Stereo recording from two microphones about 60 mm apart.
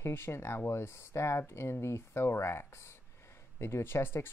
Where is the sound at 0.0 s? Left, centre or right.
Left.